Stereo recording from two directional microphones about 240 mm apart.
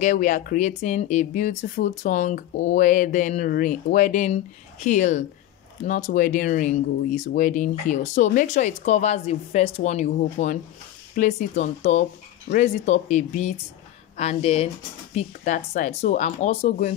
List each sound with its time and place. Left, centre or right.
0.0 s speech: left